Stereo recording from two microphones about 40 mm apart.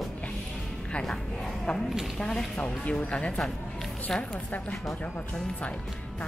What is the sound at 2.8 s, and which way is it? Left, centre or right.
Speech, left.